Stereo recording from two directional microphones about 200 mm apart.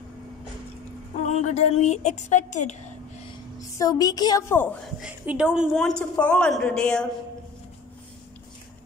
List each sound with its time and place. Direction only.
1.2 s speech: 35° left (ahead or behind)
3.6 s a woman's voice: 15° left (ahead or behind)
5.0 s a woman's voice: 5° right (ahead or behind)